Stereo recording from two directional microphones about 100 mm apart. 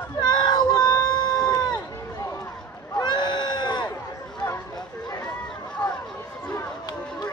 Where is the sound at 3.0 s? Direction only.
45° left (ahead or behind).